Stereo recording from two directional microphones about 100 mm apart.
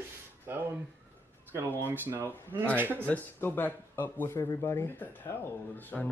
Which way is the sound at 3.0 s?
20° left (ahead or behind).